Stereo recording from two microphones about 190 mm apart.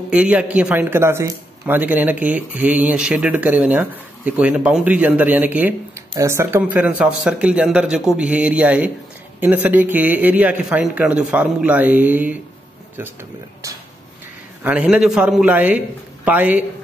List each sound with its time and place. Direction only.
0.1 s a man's voice: 5° right (ahead or behind)
14.6 s a man's voice: 5° right (ahead or behind)